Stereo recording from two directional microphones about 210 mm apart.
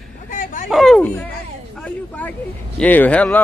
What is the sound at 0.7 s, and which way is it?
Speech, centre (ahead or behind).